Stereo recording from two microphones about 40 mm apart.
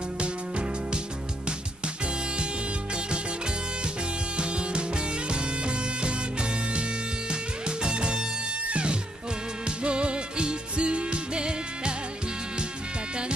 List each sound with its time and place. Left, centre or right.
4.4 s music: right
7.2 s music: right